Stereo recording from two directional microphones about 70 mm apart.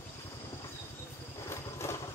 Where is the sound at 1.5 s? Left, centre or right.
Left.